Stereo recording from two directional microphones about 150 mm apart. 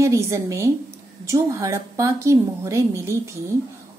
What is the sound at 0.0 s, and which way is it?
A woman's voice, 20° right (ahead or behind).